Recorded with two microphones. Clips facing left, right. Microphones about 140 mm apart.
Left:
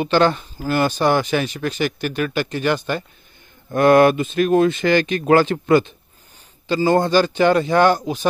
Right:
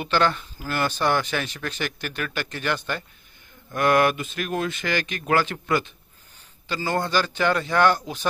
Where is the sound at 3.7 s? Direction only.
30° left (ahead or behind).